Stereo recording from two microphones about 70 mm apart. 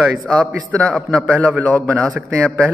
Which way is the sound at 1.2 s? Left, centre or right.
Right.